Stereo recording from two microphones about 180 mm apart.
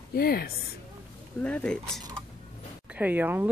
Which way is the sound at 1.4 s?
5° left (ahead or behind).